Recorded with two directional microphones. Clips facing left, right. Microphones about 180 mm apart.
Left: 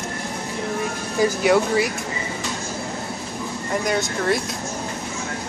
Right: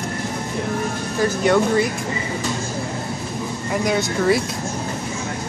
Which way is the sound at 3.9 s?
Centre (ahead or behind).